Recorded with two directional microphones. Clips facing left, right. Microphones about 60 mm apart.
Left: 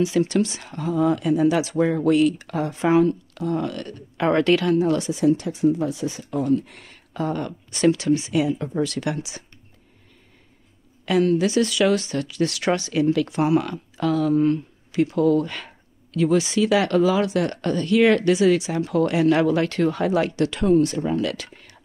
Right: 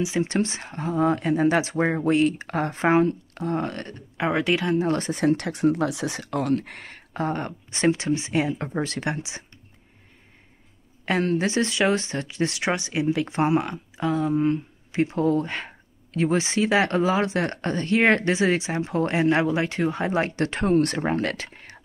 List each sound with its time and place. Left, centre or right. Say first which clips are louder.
0.0 s speech: left 4 dB; right
4.3 s speech: left 5 dB; centre
4.6 s speech: left 3 dB; right
11.1 s speech: left 4 dB; right